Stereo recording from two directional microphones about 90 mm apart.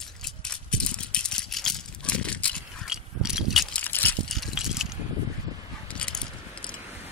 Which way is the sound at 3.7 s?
20° left (ahead or behind).